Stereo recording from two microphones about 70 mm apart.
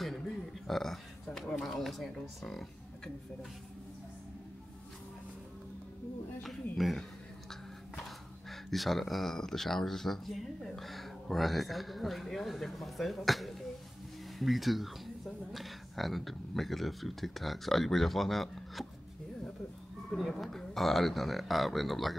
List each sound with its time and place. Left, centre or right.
0.0 s a sound: centre
2.1 s speech: centre
6.4 s speech: centre
20.2 s speech: centre